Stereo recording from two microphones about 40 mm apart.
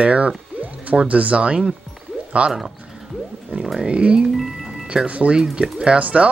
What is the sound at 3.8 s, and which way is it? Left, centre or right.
Speech, right.